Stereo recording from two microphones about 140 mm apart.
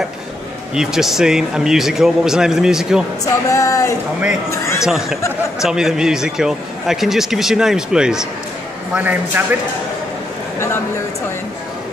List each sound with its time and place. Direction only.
0.7 s a man's voice: 5° right (ahead or behind)
3.3 s a sound: 20° left (ahead or behind)
4.8 s a man's voice: 5° right (ahead or behind)